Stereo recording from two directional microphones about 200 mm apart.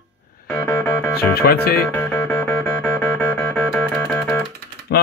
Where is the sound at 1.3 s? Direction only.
50° left (ahead or behind).